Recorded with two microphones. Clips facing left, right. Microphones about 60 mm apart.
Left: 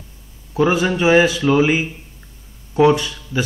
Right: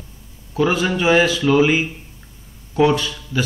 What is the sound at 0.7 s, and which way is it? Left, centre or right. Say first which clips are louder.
Speech: left 2 dB; centre.